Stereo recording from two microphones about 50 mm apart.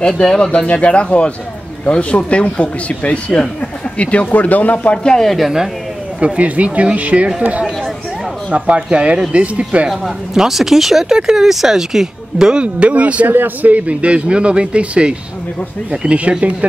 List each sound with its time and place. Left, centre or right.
0.2 s speech: centre; by 4.9 s left
4.9 s speech: centre
6.1 s a man's voice: right
8.5 s a man's voice: right
9.8 s speech: centre; by 13.3 s right
13.3 s a man's voice: right